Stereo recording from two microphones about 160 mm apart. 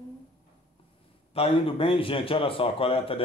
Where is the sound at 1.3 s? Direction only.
35° left (ahead or behind).